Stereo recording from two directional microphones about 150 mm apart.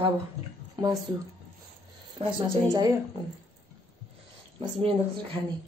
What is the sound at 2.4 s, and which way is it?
Speech, 25° right (ahead or behind).